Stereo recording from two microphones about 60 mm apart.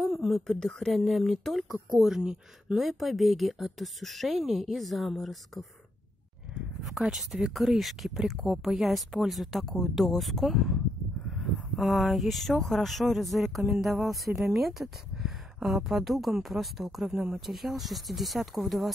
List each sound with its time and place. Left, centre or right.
0.0 s speech: centre
6.8 s speech: centre